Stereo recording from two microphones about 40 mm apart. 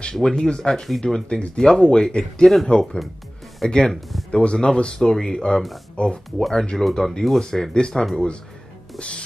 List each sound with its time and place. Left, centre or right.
0.0 s speech: centre
6.0 s speech: left
6.8 s speech: centre
7.7 s speech: left